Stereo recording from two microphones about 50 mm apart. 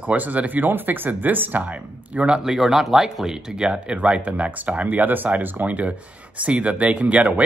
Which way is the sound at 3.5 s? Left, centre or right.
Centre.